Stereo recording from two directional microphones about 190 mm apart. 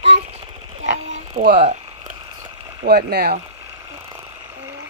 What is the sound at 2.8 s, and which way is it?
Speech, 55° right (ahead or behind).